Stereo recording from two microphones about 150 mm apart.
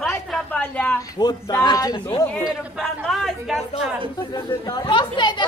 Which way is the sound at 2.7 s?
Centre (ahead or behind).